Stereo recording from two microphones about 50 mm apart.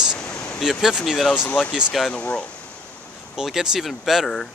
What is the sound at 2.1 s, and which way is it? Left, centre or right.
Speech, left.